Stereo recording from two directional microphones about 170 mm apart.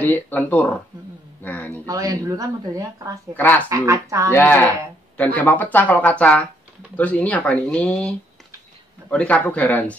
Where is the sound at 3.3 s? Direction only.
10° left (ahead or behind).